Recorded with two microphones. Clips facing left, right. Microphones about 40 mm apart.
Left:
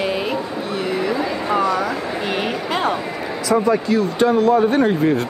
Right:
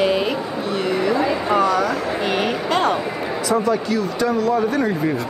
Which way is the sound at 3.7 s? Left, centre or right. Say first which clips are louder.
Left 3 dB; left.